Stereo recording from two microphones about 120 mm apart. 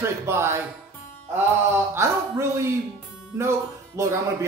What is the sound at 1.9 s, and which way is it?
Speech, 20° right (ahead or behind).